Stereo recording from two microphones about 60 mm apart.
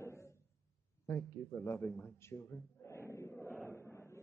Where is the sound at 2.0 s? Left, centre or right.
Left.